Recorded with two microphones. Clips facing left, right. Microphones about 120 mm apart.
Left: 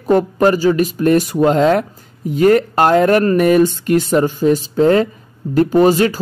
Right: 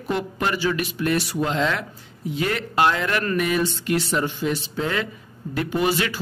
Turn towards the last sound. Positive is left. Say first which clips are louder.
# left 11 dB
turn(degrees=40)  # may be behind; listen again after turning